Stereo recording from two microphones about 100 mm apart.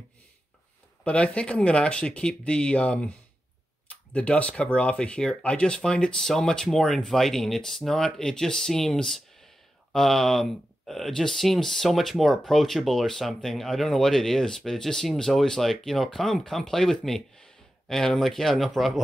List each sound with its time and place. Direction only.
1.0 s speech: 10° left (ahead or behind)